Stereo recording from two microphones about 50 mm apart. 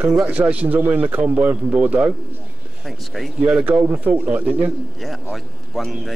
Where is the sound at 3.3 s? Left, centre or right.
Right.